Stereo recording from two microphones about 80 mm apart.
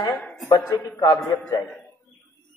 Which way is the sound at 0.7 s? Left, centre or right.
Left.